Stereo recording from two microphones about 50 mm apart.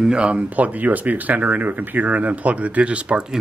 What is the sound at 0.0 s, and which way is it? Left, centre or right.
Speech, centre.